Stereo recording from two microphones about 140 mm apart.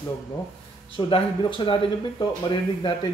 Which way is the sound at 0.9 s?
35° left (ahead or behind).